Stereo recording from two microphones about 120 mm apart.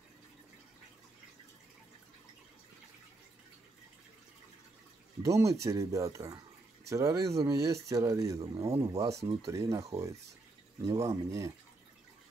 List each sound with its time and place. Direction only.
5.2 s speech: 25° right (ahead or behind)